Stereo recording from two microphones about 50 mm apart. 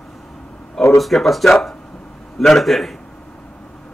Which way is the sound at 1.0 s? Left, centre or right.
Centre.